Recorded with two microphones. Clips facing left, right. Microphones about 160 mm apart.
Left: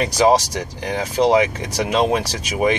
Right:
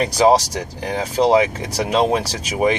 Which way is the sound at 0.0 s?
35° right (ahead or behind).